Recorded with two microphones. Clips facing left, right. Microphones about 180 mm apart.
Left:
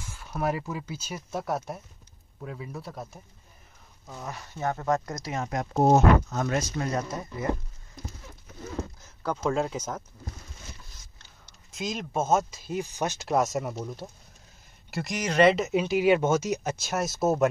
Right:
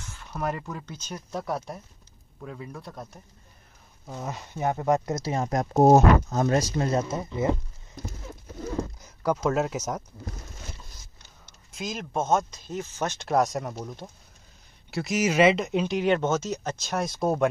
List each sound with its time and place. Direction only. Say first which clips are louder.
0.0 s speech: left 2 dB; 10° left (ahead or behind)
4.1 s speech: right 4 dB; 20° right (ahead or behind)
8.7 s a sound: right 2 dB; 10° right (ahead or behind)
9.4 s speech: right 2 dB; 5° right (ahead or behind)
11.7 s speech: even; centre (ahead or behind)